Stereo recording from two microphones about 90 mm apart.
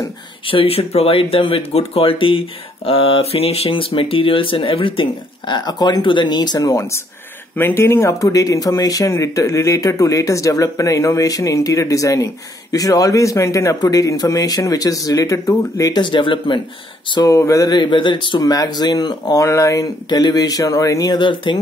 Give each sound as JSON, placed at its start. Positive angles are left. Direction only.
{"t": 0.5, "sound": "speech", "side_deg": 90}
{"t": 5.5, "sound": "speech", "side_deg": 50}
{"t": 7.5, "sound": "speech", "side_deg": 25}
{"t": 16.0, "sound": "a man's voice", "side_deg": 65}
{"t": 17.2, "sound": "speech", "side_deg": 35}
{"t": 17.6, "sound": "a man's voice", "side_deg": 55}
{"t": 18.4, "sound": "speech", "side_deg": 45}
{"t": 19.4, "sound": "speech", "side_deg": 35}
{"t": 20.1, "sound": "speech", "side_deg": 50}
{"t": 21.2, "sound": "a man's voice", "side_deg": 65}